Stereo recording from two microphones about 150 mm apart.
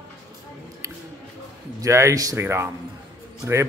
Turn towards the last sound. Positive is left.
turn(degrees=-20)  # may be behind; listen again after turning